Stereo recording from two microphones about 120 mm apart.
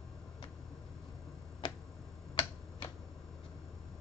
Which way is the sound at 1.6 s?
40° left (ahead or behind).